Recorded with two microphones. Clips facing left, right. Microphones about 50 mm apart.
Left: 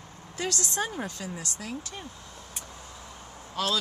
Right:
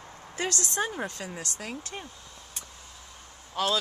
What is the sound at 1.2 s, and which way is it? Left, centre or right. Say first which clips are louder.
Speech: even; right.